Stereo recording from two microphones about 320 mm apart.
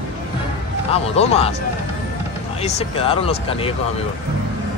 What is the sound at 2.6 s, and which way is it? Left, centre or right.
Speech, centre.